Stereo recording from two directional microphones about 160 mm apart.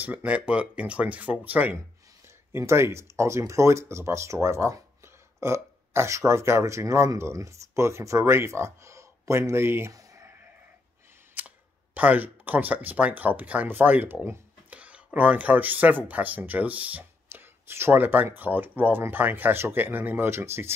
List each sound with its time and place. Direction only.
0.0 s speech: 10° right (ahead or behind)
11.3 s speech: 10° right (ahead or behind)